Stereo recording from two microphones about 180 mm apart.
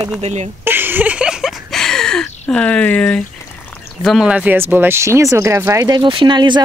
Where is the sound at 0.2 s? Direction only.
35° right (ahead or behind).